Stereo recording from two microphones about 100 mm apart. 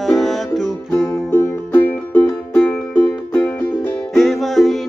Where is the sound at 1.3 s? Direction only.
20° left (ahead or behind).